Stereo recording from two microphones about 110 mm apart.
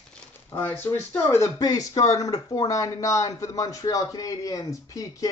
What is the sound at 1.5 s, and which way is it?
Speech, 35° left (ahead or behind).